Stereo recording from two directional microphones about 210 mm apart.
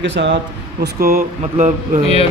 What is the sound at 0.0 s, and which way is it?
Speech, 60° right (ahead or behind).